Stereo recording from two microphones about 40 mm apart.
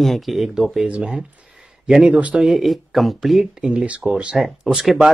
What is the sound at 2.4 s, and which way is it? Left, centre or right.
Speech, centre.